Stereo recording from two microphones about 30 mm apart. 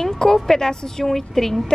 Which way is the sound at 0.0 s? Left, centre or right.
Centre.